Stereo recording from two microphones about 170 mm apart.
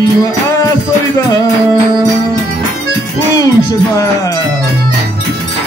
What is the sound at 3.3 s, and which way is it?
Music, 20° left (ahead or behind).